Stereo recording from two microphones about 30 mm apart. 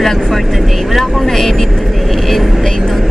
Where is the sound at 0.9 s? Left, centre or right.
Centre.